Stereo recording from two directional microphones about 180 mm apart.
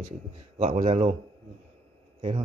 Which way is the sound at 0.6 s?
40° right (ahead or behind).